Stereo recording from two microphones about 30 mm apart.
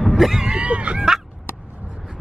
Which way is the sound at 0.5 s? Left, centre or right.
Right.